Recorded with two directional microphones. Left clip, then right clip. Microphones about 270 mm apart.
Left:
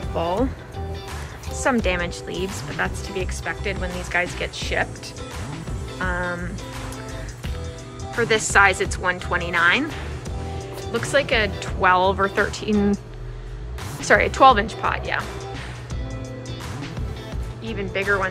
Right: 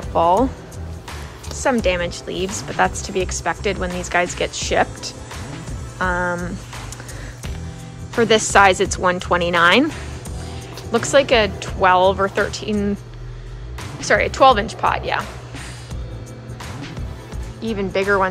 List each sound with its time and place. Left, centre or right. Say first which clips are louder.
0.1 s speech: right 9 dB; centre
1.6 s speech: right 3 dB; centre
2.8 s speech: right 8 dB; centre
8.2 s speech: right 4 dB; centre
10.9 s speech: right 6 dB; centre
13.9 s speech: right 1 dB; centre
17.6 s speech: right 5 dB; centre